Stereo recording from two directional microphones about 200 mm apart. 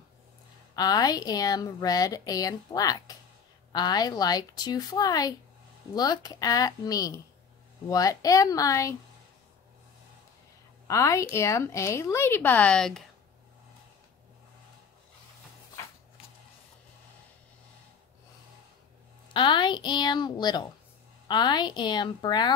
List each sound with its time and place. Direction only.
0.7 s a woman's voice: 20° left (ahead or behind)
10.9 s speech: 15° left (ahead or behind)
19.3 s a woman's voice: 25° left (ahead or behind)